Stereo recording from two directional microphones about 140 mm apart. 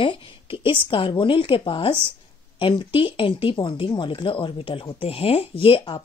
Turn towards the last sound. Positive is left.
turn(degrees=35)  # may be behind; listen again after turning